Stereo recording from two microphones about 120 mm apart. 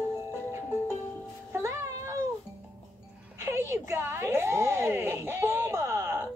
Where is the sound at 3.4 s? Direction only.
25° right (ahead or behind).